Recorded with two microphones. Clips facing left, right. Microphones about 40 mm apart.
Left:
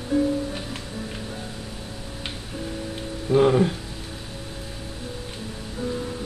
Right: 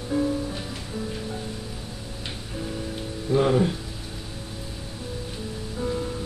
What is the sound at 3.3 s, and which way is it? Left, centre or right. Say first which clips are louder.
Speech: left 3 dB; centre.